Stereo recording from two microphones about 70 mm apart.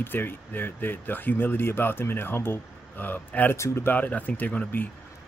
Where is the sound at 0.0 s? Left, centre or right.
Left.